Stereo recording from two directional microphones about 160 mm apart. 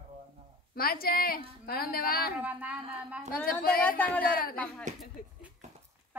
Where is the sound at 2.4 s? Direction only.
10° right (ahead or behind).